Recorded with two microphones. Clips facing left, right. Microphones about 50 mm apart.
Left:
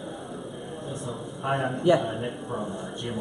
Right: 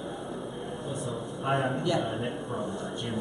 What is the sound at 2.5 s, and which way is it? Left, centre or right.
Speech, left.